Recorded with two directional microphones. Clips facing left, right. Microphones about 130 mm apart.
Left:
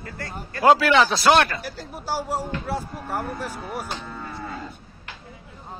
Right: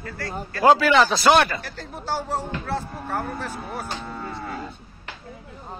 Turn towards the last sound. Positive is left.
turn(degrees=10)  # may be behind; listen again after turning